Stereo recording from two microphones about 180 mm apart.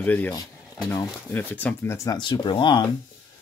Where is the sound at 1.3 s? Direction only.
10° left (ahead or behind); by 2.9 s 25° left (ahead or behind).